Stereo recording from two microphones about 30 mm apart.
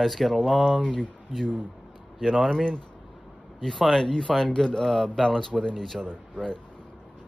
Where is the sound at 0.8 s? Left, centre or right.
Left.